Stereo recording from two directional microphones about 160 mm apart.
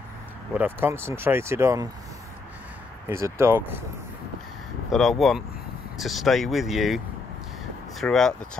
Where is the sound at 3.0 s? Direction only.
15° right (ahead or behind).